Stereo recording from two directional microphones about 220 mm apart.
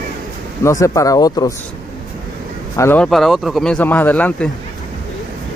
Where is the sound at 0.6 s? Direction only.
15° left (ahead or behind).